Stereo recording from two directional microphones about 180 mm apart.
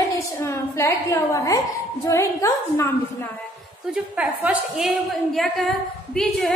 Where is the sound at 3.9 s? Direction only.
5° right (ahead or behind).